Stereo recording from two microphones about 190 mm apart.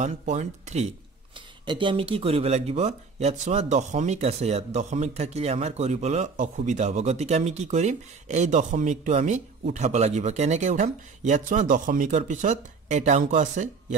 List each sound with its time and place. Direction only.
0.0 s speech: 40° right (ahead or behind)
1.7 s speech: 25° right (ahead or behind)